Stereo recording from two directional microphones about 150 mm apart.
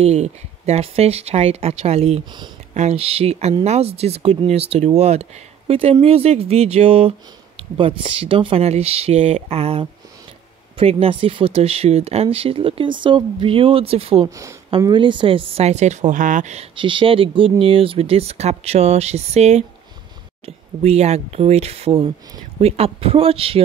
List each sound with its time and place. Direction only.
0.0 s speech: 50° right (ahead or behind)
14.2 s speech: 20° right (ahead or behind); by 16.6 s 55° right (ahead or behind)
16.7 s speech: 35° right (ahead or behind)